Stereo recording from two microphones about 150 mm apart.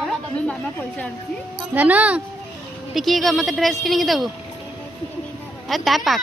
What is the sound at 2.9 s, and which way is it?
A woman's voice, centre (ahead or behind).